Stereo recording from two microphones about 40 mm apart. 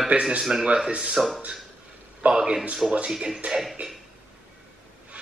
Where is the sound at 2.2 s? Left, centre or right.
Right.